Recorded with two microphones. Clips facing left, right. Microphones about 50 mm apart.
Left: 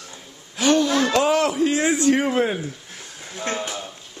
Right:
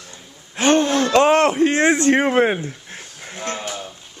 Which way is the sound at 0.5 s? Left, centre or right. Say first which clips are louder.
Right 2 dB; right.